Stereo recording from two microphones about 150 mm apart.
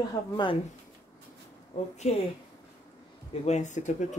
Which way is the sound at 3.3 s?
50° left (ahead or behind).